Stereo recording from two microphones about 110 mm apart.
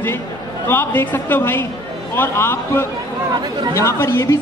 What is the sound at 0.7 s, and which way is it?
Speech, 20° left (ahead or behind).